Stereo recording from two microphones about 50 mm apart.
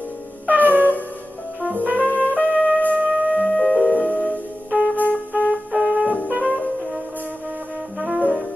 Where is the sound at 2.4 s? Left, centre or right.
Left.